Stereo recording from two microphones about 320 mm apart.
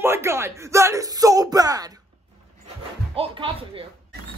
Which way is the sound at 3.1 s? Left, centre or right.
Centre.